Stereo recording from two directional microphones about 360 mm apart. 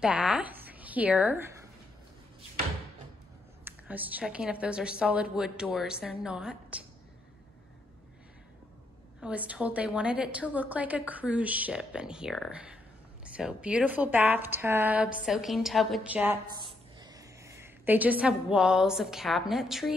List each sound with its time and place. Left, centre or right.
0.0 s a woman's voice: centre
3.6 s a woman's voice: centre
9.2 s a woman's voice: centre